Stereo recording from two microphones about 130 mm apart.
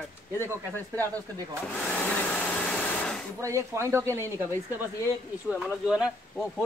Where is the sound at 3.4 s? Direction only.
25° right (ahead or behind).